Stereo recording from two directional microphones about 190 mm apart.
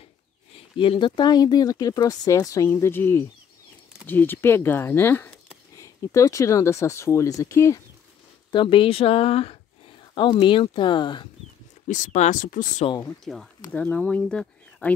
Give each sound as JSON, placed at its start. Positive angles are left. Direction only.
{"t": 0.7, "sound": "speech", "side_deg": 25}
{"t": 8.5, "sound": "speech", "side_deg": 25}
{"t": 11.9, "sound": "speech", "side_deg": 40}
{"t": 13.0, "sound": "speech", "side_deg": 0}